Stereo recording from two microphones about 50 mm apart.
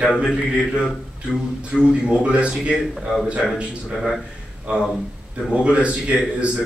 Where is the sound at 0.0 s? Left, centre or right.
Centre.